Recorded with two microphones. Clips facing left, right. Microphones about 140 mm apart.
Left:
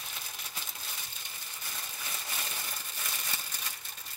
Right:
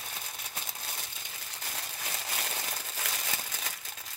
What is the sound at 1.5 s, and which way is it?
Crumpling, 80° right.